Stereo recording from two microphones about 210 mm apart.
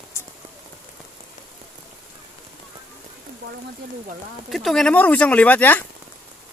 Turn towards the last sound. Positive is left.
turn(degrees=10)  # may be behind; listen again after turning